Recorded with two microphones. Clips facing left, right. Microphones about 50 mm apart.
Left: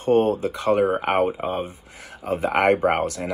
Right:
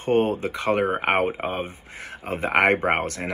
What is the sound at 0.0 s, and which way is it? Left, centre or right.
Speech, right.